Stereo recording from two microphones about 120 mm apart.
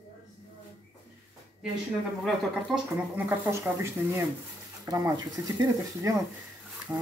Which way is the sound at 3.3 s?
25° right (ahead or behind).